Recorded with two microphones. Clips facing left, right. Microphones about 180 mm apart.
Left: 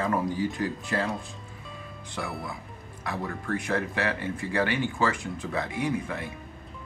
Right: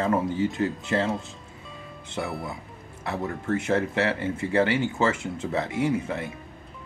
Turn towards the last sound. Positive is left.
turn(degrees=-25)  # may be behind; listen again after turning